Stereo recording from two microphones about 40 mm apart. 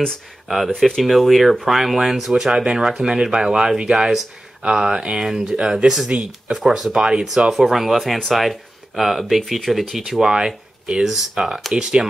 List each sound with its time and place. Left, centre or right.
0.7 s speech: centre
1.0 s speech: centre
3.9 s speech: centre
4.6 s speech: centre
6.0 s speech: right